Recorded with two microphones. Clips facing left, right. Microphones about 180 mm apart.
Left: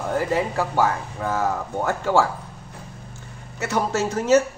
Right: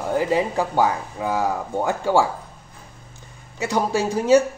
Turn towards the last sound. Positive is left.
turn(degrees=-15)  # may be behind; listen again after turning